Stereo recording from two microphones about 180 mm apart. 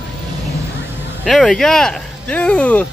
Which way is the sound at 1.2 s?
5° left (ahead or behind).